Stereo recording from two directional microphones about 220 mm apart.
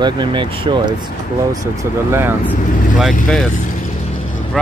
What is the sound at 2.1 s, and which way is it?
Speech, 10° right (ahead or behind).